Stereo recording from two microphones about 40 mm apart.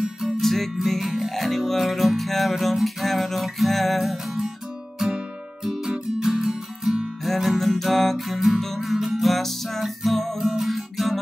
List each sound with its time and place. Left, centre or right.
0.0 s music: centre
0.4 s music: centre
7.2 s music: centre
8.3 s music: centre